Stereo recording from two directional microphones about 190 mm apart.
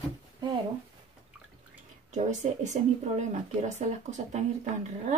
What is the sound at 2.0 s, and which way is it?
Speech, 40° right (ahead or behind).